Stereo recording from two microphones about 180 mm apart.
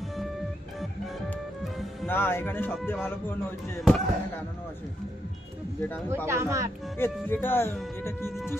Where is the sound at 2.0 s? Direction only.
10° left (ahead or behind).